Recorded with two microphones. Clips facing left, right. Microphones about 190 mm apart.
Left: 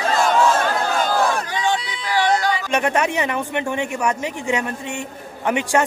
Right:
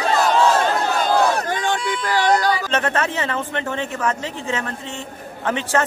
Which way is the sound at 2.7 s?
15° left (ahead or behind).